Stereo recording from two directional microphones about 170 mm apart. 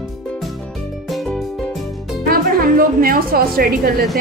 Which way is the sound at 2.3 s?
60° right (ahead or behind).